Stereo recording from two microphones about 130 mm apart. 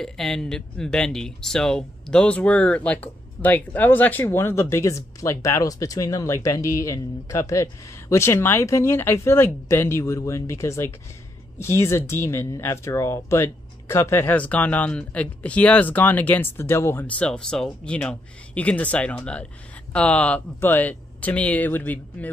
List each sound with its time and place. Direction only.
0.0 s speech: 5° left (ahead or behind)